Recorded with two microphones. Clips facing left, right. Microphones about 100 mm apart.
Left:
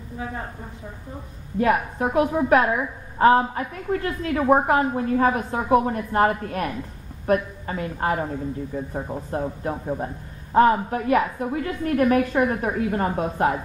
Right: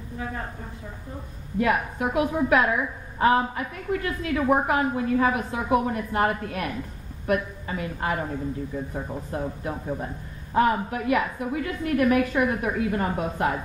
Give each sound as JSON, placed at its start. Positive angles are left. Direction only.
{"t": 0.2, "sound": "a woman's voice", "side_deg": 25}
{"t": 1.6, "sound": "a woman's voice", "side_deg": 40}